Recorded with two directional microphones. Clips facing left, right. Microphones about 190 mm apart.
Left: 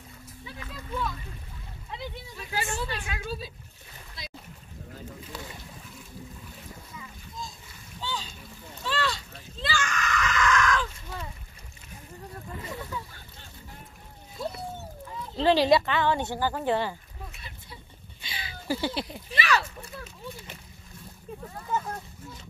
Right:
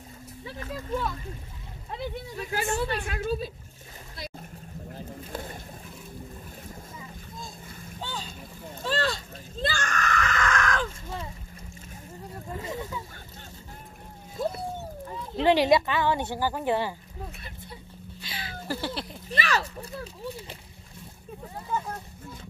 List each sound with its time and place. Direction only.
0.5 s speech: 45° right (ahead or behind)
5.3 s boat: 50° right (ahead or behind)
8.0 s splash: 50° right (ahead or behind)
12.6 s a sound: 20° right (ahead or behind)
15.3 s speech: 20° right (ahead or behind)
18.2 s a sound: centre (ahead or behind)
19.3 s speech: 45° right (ahead or behind)